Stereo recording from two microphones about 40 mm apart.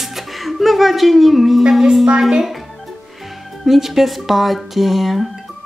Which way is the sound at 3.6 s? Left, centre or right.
Centre.